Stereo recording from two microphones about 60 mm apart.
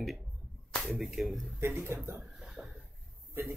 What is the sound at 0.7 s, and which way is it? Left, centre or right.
Speech, centre.